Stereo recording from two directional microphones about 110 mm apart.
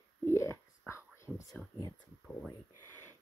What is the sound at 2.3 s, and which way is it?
Speech, 15° left (ahead or behind).